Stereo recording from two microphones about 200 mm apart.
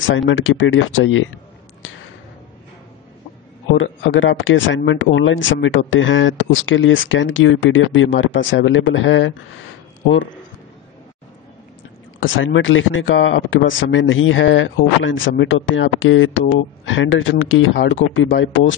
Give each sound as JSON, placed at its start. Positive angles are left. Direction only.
{"t": 0.0, "sound": "speech", "side_deg": 75}
{"t": 3.7, "sound": "speech", "side_deg": 75}
{"t": 12.2, "sound": "speech", "side_deg": 70}